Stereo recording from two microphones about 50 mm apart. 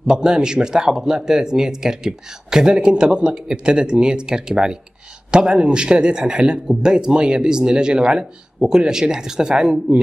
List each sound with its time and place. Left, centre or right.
0.0 s speech: centre